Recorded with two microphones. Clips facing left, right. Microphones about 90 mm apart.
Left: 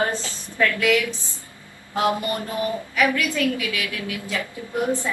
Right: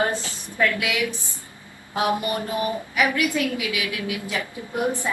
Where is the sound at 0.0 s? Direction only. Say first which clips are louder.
Even; 20° right (ahead or behind).